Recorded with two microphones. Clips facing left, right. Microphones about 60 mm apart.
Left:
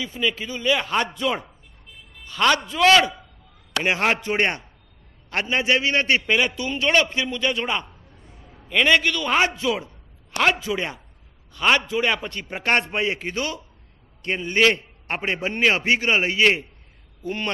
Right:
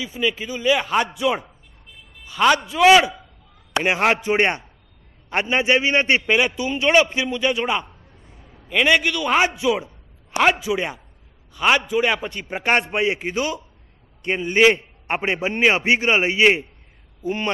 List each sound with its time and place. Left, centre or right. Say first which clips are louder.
0.0 s a man's voice: right 2 dB; centre